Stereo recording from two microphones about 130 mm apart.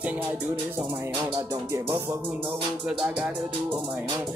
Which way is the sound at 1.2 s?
20° right (ahead or behind).